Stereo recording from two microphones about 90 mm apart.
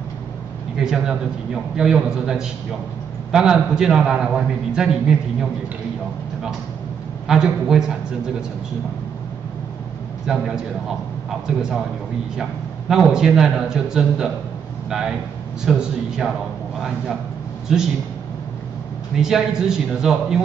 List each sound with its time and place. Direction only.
0.7 s a man's voice: 5° right (ahead or behind)
7.2 s a man's voice: 5° right (ahead or behind)
10.2 s a man's voice: 5° right (ahead or behind)
19.1 s a man's voice: 5° right (ahead or behind)